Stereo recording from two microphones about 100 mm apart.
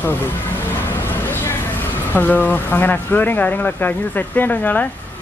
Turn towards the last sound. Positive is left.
turn(degrees=15)  # may be behind; listen again after turning